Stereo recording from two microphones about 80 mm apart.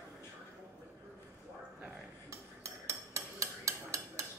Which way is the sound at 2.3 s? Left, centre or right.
Right.